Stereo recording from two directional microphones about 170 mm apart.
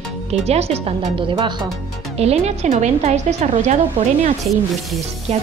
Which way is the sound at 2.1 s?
40° right (ahead or behind).